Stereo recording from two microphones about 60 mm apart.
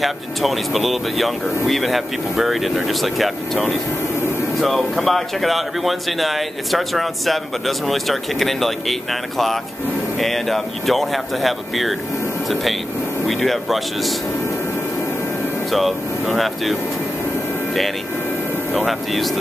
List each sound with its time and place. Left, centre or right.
0.0 s speech: centre
4.6 s speech: centre
10.1 s speech: centre
13.3 s speech: centre
15.7 s speech: centre
18.9 s speech: centre